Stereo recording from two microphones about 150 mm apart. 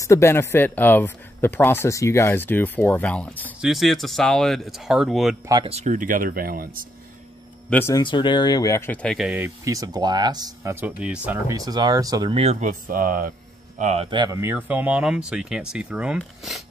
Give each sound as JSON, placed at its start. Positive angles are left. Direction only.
{"t": 0.0, "sound": "speech", "side_deg": 20}
{"t": 5.7, "sound": "speech", "side_deg": -50}
{"t": 7.9, "sound": "speech", "side_deg": 30}
{"t": 9.2, "sound": "speech", "side_deg": -5}
{"t": 9.7, "sound": "speech", "side_deg": -25}
{"t": 11.0, "sound": "speech", "side_deg": -5}
{"t": 11.4, "sound": "speech", "side_deg": -25}
{"t": 12.3, "sound": "speech", "side_deg": -45}
{"t": 13.7, "sound": "speech", "side_deg": -50}
{"t": 14.1, "sound": "speech", "side_deg": -30}
{"t": 14.4, "sound": "speech", "side_deg": -10}